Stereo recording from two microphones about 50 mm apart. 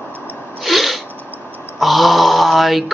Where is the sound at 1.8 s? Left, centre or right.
Centre.